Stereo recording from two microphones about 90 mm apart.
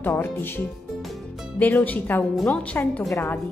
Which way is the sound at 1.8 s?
20° left (ahead or behind).